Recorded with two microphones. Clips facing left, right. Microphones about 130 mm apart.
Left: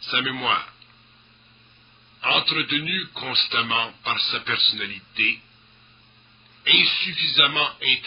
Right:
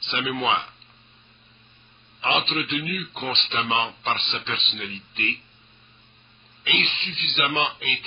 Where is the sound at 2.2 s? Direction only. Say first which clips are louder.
Right 2 dB; 30° right (ahead or behind).